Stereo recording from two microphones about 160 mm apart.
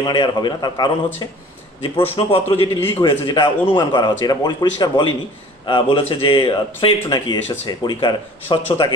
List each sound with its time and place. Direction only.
0.0 s a man's voice: 30° left (ahead or behind)